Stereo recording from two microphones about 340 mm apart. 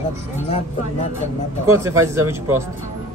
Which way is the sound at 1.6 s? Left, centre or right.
Centre.